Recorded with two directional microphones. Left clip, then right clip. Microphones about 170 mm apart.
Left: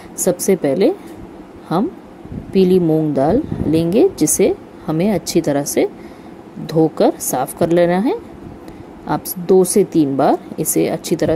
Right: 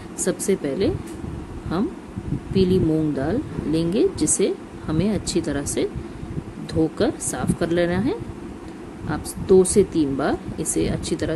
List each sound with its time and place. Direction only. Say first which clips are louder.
0.2 s a woman's voice: left 7 dB; 25° left (ahead or behind)
2.5 s a woman's voice: left 7 dB; 30° left (ahead or behind)